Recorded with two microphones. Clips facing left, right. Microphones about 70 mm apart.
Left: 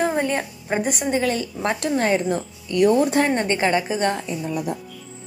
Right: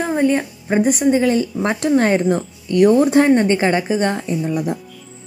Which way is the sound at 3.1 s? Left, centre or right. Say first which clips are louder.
Right 7 dB; centre.